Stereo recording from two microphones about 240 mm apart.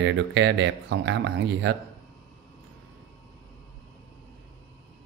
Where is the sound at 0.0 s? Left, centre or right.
Right.